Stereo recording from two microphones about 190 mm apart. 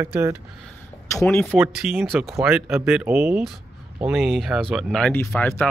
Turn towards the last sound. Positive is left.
turn(degrees=10)  # may be behind; listen again after turning